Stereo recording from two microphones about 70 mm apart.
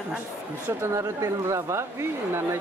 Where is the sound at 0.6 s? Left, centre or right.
Right.